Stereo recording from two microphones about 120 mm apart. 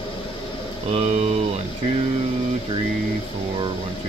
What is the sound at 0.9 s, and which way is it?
Speech, 60° right (ahead or behind).